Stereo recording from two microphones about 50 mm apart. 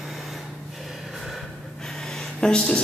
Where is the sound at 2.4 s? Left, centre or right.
Centre.